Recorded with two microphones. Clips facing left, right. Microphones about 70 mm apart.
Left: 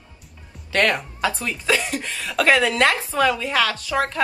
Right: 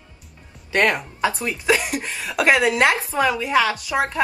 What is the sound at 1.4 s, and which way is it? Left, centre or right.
Speech, right.